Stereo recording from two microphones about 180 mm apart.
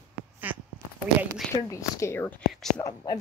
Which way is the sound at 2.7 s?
20° left (ahead or behind).